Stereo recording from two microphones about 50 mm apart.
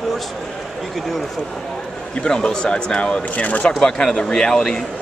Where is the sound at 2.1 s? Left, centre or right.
Centre.